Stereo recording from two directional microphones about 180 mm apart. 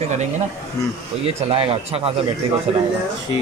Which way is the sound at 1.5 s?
30° right (ahead or behind).